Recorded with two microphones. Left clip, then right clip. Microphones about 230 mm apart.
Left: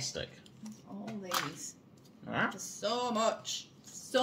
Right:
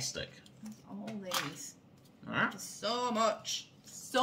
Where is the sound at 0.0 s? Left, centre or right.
Centre.